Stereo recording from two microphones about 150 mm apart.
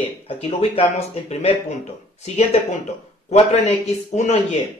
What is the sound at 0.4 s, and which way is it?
Speech, 45° left (ahead or behind).